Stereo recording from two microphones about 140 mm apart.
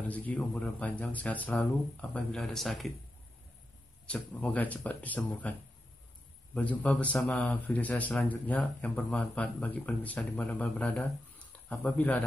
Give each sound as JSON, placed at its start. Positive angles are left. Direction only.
{"t": 0.1, "sound": "a man's voice", "side_deg": 10}
{"t": 4.0, "sound": "a man's voice", "side_deg": 10}
{"t": 6.5, "sound": "a man's voice", "side_deg": 10}